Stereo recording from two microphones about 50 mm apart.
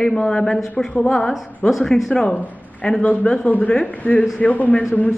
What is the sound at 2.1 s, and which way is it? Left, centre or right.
Speech, centre.